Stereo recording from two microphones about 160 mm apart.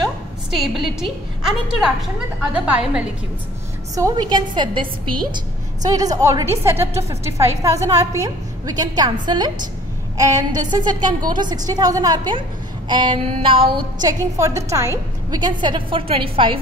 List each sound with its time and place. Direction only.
0.6 s a woman's voice: centre (ahead or behind)
3.9 s a woman's voice: 25° right (ahead or behind)